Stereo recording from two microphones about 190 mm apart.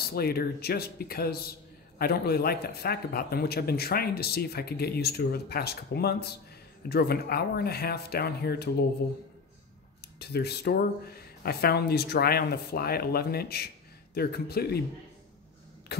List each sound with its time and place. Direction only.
0.0 s a man's voice: 55° left (ahead or behind)
10.1 s a man's voice: 60° left (ahead or behind)